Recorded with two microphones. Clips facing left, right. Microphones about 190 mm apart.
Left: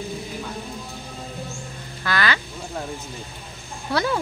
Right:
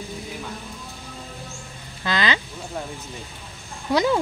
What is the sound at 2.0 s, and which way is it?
Speech, 20° right (ahead or behind).